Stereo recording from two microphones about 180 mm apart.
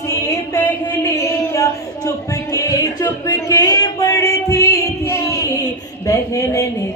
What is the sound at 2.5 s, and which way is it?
Music, 20° left (ahead or behind).